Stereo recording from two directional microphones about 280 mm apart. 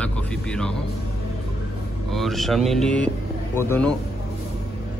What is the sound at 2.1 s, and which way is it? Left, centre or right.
A man's voice, centre.